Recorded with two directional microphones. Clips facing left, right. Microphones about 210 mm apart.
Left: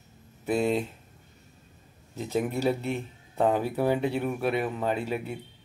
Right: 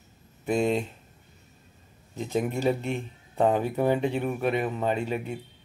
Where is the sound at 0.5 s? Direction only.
5° left (ahead or behind).